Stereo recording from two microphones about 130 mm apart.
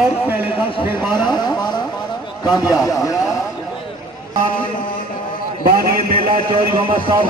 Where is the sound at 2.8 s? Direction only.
25° left (ahead or behind).